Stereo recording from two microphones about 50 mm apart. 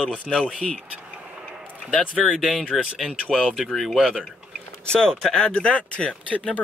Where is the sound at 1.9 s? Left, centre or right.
Left.